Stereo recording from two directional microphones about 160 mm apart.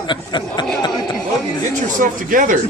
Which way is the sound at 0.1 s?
30° left (ahead or behind).